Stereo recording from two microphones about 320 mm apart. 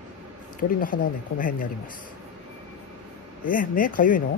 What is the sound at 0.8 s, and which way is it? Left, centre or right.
Speech, left.